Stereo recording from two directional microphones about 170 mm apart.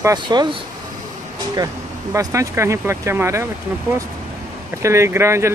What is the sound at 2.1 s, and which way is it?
Speech, 15° right (ahead or behind).